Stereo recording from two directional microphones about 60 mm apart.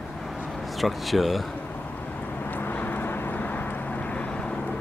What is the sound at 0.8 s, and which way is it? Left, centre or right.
Speech, centre.